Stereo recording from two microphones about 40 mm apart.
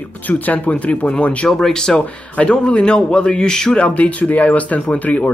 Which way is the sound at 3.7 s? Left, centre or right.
Left.